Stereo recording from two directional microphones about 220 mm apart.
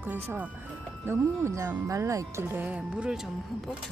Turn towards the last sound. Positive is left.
turn(degrees=-5)  # may be behind; listen again after turning